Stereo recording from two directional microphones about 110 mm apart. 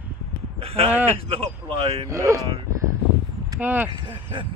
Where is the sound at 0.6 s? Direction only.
60° right (ahead or behind).